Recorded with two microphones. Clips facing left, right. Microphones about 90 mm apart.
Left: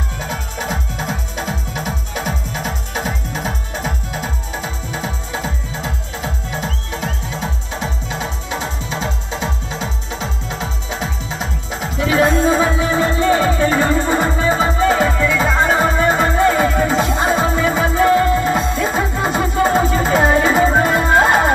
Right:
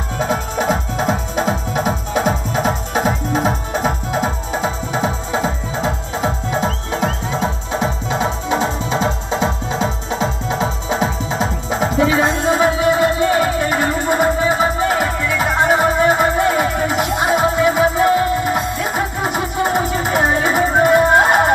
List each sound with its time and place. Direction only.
0.2 s music: 30° right (ahead or behind)
12.2 s music: 15° right (ahead or behind)